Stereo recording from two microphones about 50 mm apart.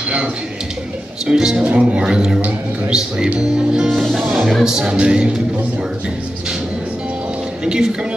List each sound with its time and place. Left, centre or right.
1.2 s speech: centre
3.9 s speech: centre
4.4 s speech: centre
7.6 s speech: centre